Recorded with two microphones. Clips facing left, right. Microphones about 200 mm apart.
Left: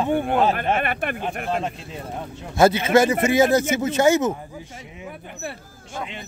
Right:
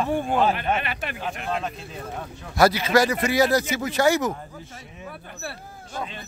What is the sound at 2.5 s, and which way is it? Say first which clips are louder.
Speech: left 3 dB; 25° left (ahead or behind).